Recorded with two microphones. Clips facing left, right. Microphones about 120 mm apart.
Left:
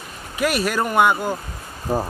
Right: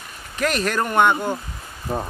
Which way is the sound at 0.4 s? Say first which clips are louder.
Left 1 dB; 10° left (ahead or behind).